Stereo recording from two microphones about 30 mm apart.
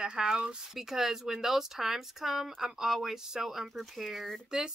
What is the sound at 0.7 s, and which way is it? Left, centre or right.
Speech, centre.